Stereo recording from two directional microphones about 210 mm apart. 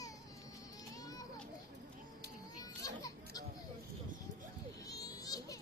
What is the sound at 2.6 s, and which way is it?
Children playing, 15° left (ahead or behind).